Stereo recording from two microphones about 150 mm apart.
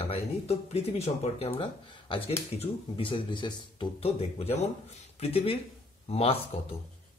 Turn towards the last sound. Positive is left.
turn(degrees=40)  # may be behind; listen again after turning